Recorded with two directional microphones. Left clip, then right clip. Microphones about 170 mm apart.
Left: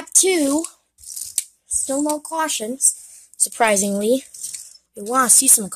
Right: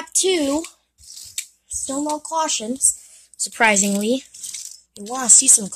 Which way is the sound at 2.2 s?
25° left (ahead or behind).